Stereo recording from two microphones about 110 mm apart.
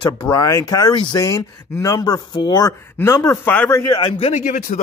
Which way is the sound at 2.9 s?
30° left (ahead or behind).